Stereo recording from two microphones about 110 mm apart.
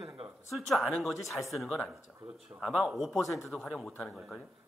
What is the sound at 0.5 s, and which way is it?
A man's voice, centre (ahead or behind).